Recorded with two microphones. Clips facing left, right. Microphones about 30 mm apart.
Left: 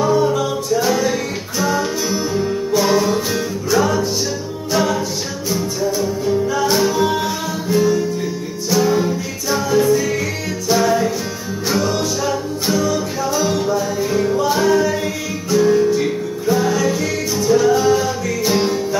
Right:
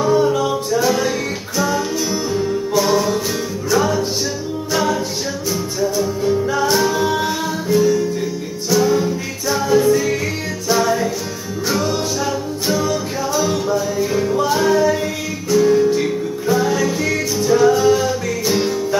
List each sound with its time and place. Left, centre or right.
0.0 s music: centre
5.5 s music: centre
7.7 s music: centre
9.8 s music: centre
10.7 s music: centre
17.4 s music: centre
17.7 s music: centre